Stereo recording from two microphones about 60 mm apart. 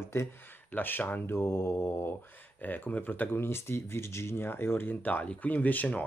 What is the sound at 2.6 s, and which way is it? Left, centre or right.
Speech, left.